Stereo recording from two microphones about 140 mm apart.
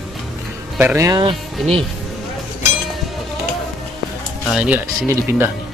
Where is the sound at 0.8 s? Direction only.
20° right (ahead or behind).